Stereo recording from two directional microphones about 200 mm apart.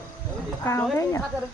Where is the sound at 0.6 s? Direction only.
10° left (ahead or behind).